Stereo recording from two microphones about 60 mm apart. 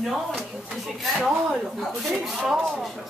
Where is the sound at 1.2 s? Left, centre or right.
Centre.